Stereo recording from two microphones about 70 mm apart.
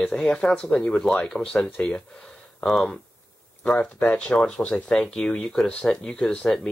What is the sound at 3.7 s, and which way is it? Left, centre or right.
Speech, centre.